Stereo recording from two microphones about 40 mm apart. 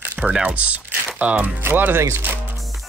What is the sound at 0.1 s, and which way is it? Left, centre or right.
Speech, right.